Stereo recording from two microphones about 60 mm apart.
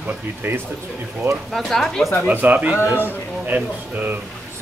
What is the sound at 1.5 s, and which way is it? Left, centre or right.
Speech, centre.